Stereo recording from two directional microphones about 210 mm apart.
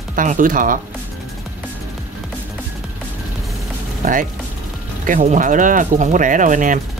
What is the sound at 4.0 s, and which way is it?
Speech, 40° right (ahead or behind).